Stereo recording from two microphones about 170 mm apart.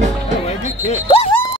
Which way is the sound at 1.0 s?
35° left (ahead or behind).